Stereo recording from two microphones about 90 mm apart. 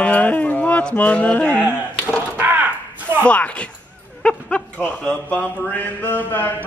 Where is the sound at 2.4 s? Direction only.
15° right (ahead or behind).